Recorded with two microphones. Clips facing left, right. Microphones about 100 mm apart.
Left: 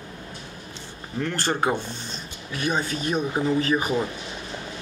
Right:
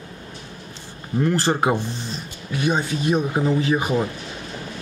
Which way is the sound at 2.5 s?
25° right (ahead or behind).